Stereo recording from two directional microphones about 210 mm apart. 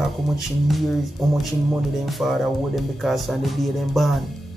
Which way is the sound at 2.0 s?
Centre (ahead or behind).